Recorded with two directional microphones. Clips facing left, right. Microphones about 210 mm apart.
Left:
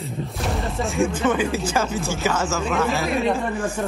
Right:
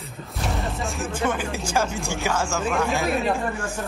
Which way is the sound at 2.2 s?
10° right (ahead or behind).